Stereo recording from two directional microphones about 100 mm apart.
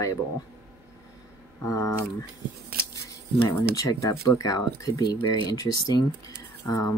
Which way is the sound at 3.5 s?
35° left (ahead or behind).